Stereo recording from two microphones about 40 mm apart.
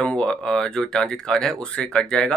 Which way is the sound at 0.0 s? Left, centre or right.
Left.